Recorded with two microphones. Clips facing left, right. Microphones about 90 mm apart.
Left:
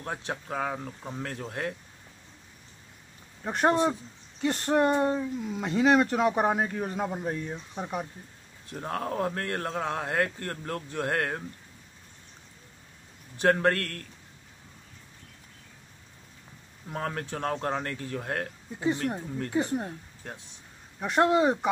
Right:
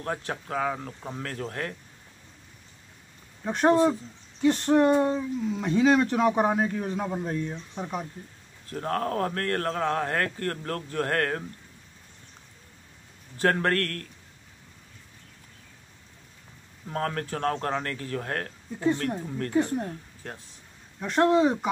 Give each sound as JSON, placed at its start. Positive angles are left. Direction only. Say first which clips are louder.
{"t": 0.0, "sound": "speech", "louder": "right 3 dB", "side_deg": 15}
{"t": 1.4, "sound": "speech", "louder": "right 2 dB", "side_deg": 15}
{"t": 3.4, "sound": "speech", "louder": "right 3 dB", "side_deg": 10}
{"t": 13.4, "sound": "speech", "louder": "even", "side_deg": 15}
{"t": 16.9, "sound": "speech", "louder": "right 3 dB", "side_deg": 15}